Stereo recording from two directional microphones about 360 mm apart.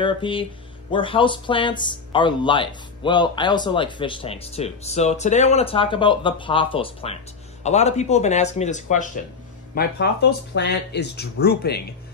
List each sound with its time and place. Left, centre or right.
0.0 s speech: centre